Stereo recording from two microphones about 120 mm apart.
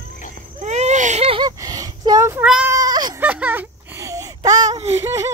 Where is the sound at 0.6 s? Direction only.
75° right (ahead or behind).